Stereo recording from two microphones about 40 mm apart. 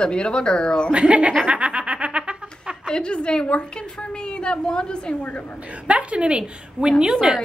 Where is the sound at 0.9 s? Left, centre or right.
Right.